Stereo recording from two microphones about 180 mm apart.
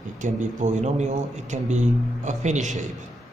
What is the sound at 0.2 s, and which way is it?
A man's voice, 45° right (ahead or behind).